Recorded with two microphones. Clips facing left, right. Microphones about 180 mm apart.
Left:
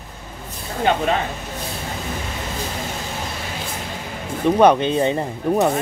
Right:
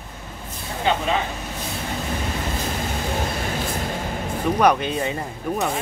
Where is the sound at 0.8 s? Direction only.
50° left (ahead or behind).